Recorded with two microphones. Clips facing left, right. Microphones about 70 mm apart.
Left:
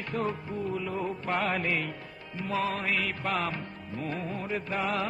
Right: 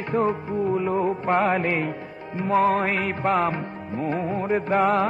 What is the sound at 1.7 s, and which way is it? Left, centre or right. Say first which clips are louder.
Music: right 6 dB; right.